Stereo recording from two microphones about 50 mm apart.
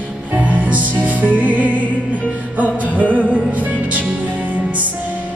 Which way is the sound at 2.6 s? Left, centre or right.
Left.